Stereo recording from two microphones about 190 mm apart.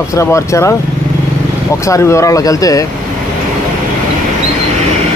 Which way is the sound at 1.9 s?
15° left (ahead or behind).